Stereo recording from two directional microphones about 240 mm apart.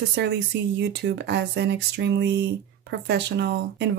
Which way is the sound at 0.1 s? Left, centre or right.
Right.